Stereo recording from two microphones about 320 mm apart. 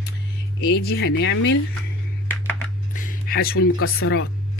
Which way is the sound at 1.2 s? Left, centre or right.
Left.